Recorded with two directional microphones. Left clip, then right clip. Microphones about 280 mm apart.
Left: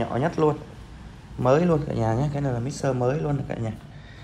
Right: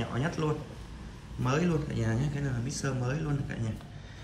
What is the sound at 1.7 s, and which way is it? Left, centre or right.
Speech, centre.